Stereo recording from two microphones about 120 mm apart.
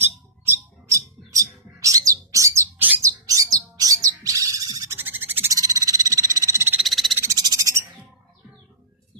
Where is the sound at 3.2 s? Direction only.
30° right (ahead or behind).